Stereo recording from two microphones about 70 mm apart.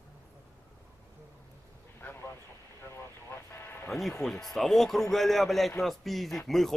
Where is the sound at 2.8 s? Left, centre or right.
Left.